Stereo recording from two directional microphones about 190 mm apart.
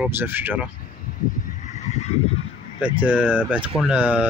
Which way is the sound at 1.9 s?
35° left (ahead or behind).